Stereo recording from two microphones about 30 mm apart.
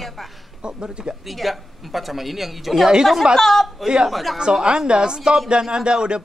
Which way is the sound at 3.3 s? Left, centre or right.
Centre.